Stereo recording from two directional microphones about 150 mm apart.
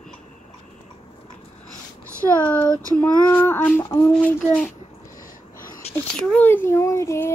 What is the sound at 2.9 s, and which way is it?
Speech, 10° left (ahead or behind).